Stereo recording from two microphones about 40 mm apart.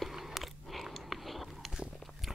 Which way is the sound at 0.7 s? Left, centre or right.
Centre.